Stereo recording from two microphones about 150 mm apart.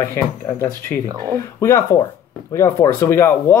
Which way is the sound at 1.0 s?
25° right (ahead or behind).